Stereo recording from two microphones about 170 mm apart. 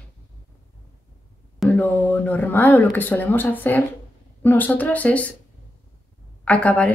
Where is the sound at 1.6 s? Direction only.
10° left (ahead or behind).